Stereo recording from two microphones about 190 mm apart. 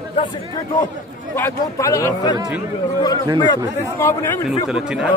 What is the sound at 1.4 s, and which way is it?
Speech, 15° left (ahead or behind).